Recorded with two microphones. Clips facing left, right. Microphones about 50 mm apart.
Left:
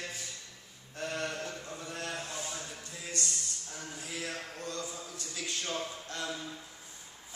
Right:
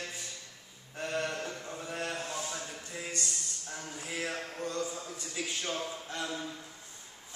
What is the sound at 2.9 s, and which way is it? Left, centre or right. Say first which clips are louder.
A man's voice: even; right.